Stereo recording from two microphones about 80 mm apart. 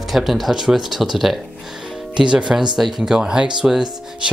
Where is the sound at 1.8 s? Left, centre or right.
Centre.